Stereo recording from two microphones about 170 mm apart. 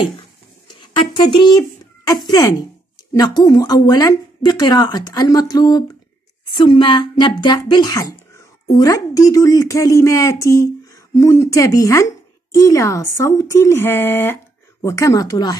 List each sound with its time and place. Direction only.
1.1 s speech: 30° left (ahead or behind)